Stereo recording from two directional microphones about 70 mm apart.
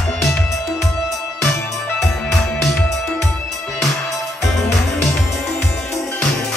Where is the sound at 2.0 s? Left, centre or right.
Centre.